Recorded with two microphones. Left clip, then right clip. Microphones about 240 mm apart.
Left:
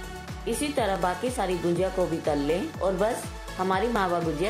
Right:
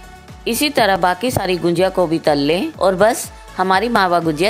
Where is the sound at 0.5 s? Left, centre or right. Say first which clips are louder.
Right 12 dB; right.